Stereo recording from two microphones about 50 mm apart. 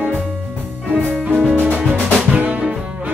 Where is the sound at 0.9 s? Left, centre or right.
Right.